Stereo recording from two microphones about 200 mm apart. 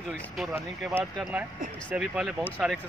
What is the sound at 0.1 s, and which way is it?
Speech, centre (ahead or behind).